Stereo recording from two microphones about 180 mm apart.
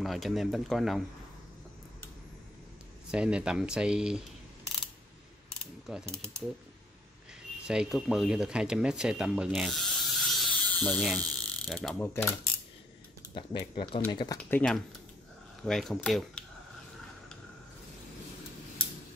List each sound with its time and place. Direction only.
0.0 s speech: centre (ahead or behind)
3.1 s speech: 5° right (ahead or behind)
6.0 s mechanisms: 15° right (ahead or behind)
7.6 s speech: 5° right (ahead or behind)
12.0 s mechanisms: 10° left (ahead or behind)
13.3 s speech: 25° left (ahead or behind)
14.5 s speech: 5° left (ahead or behind)